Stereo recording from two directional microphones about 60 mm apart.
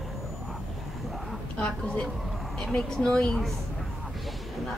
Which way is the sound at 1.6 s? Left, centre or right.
Centre.